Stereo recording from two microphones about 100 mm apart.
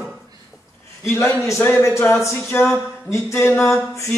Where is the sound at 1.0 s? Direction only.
30° left (ahead or behind).